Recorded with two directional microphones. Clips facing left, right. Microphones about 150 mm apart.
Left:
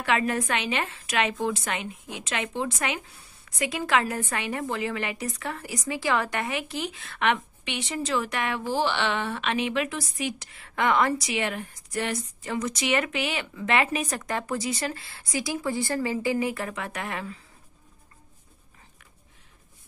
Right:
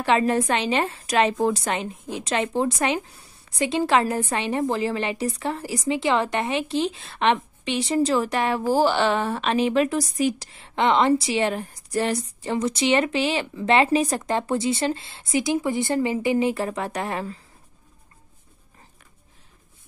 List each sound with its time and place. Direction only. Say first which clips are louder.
0.0 s a woman's voice: right 5 dB; 30° right (ahead or behind)